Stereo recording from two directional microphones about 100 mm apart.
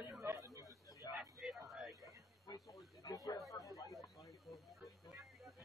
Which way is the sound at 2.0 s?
30° left (ahead or behind).